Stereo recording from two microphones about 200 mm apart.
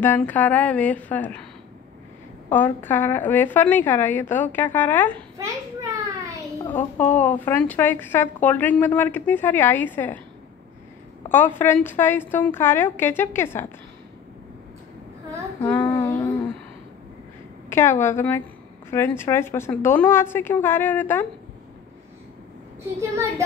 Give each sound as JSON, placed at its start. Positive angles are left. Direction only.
{"t": 0.0, "sound": "a woman's voice", "side_deg": 10}
{"t": 2.5, "sound": "a woman's voice", "side_deg": 10}
{"t": 5.4, "sound": "a sound", "side_deg": -15}
{"t": 6.7, "sound": "a woman's voice", "side_deg": 10}
{"t": 11.2, "sound": "a woman's voice", "side_deg": 10}
{"t": 15.9, "sound": "child singing", "side_deg": 15}
{"t": 17.6, "sound": "a sound", "side_deg": 10}
{"t": 18.0, "sound": "a woman's voice", "side_deg": 10}
{"t": 22.9, "sound": "speech", "side_deg": -15}